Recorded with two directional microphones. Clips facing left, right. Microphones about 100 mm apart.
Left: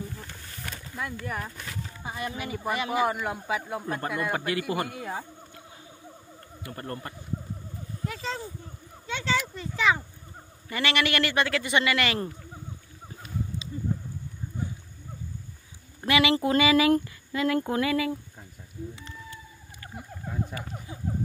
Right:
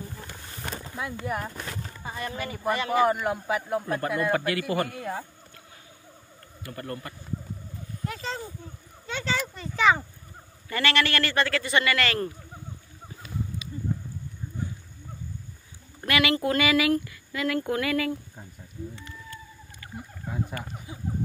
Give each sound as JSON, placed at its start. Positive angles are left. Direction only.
{"t": 0.6, "sound": "a sound", "side_deg": -35}
{"t": 1.2, "sound": "speech", "side_deg": -10}
{"t": 2.0, "sound": "speech", "side_deg": 10}
{"t": 4.3, "sound": "speech", "side_deg": 20}
{"t": 6.6, "sound": "speech", "side_deg": 30}
{"t": 8.1, "sound": "speech", "side_deg": 0}
{"t": 10.7, "sound": "speech", "side_deg": 15}
{"t": 16.1, "sound": "speech", "side_deg": 20}